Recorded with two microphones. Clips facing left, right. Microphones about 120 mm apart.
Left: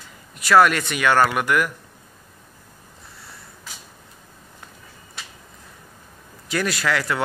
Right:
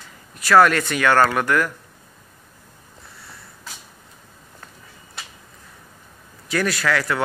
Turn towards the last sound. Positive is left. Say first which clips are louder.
# right 1 dB
turn(degrees=20)  # may be behind; listen again after turning